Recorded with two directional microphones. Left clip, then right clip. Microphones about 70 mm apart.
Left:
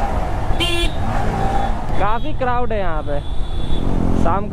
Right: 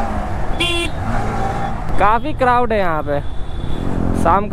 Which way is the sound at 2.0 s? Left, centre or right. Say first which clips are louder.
Right 7 dB; right.